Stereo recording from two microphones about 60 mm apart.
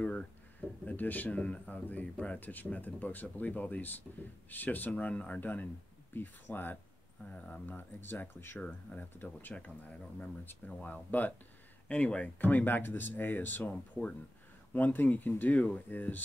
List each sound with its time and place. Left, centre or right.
0.0 s speech: left
10.7 s speech: centre
11.1 s speech: left
12.4 s speech: left